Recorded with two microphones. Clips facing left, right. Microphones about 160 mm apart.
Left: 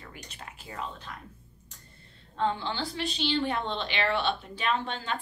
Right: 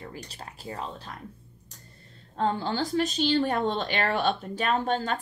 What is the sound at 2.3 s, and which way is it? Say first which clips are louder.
A woman's voice: right 3 dB; 40° right (ahead or behind).